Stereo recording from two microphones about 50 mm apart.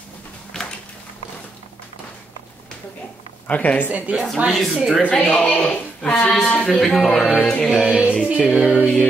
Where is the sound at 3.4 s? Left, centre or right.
Left.